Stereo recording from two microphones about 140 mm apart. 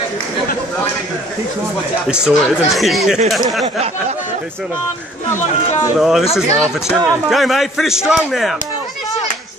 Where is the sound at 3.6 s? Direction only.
55° right (ahead or behind).